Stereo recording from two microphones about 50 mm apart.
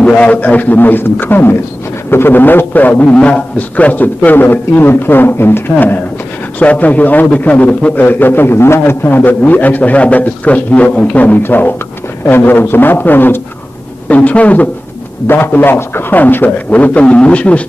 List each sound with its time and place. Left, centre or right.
0.0 s a man's voice: centre
0.4 s a man's voice: left
3.2 s a man's voice: left
6.6 s a man's voice: left
7.9 s a man's voice: left
9.0 s a man's voice: left
11.4 s a man's voice: left
14.1 s a man's voice: left
15.2 s a man's voice: left
16.7 s a man's voice: left